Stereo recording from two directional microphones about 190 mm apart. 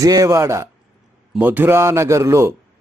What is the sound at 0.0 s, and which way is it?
Speech, 15° right (ahead or behind).